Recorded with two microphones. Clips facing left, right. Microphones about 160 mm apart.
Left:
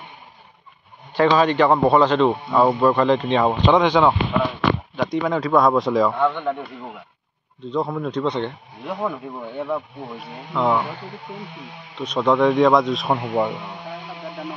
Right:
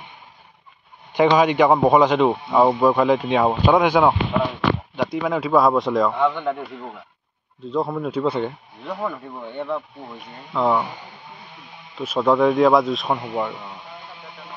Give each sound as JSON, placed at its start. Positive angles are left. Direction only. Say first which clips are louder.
{"t": 1.1, "sound": "a man's voice", "louder": "right 1 dB", "side_deg": -15}
{"t": 12.0, "sound": "a man's voice", "louder": "even", "side_deg": -5}
{"t": 13.1, "sound": "speech", "louder": "left 3 dB", "side_deg": 20}